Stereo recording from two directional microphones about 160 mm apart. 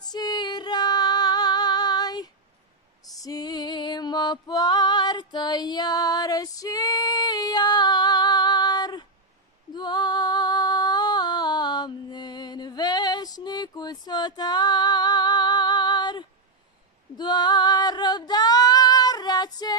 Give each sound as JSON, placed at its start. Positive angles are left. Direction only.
{"t": 0.0, "sound": "female singing", "side_deg": 25}
{"t": 3.0, "sound": "music", "side_deg": 20}
{"t": 9.8, "sound": "female singing", "side_deg": 25}